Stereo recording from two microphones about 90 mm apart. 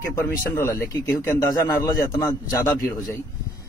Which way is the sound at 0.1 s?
30° left (ahead or behind).